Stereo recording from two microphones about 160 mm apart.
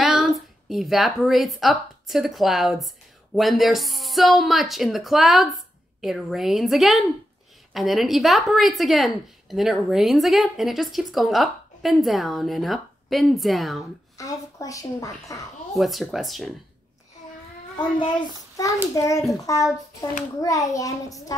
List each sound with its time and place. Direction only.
0.0 s a woman's voice: centre (ahead or behind)
14.1 s a woman's voice: 20° left (ahead or behind)
15.7 s a woman's voice: centre (ahead or behind)
17.7 s a child's voice: 30° left (ahead or behind)